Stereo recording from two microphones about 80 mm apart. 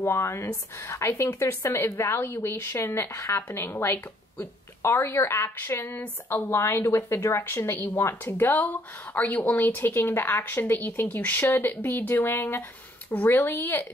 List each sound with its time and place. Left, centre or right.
0.0 s a woman's voice: left